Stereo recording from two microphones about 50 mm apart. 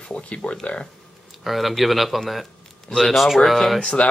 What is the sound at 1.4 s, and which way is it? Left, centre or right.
Speech, centre.